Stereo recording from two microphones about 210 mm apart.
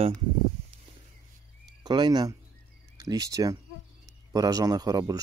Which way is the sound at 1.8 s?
20° right (ahead or behind).